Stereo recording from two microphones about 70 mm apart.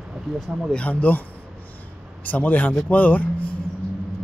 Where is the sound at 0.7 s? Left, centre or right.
Centre.